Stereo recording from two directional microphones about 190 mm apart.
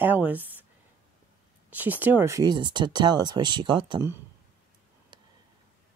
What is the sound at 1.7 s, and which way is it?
Speech, 10° right (ahead or behind).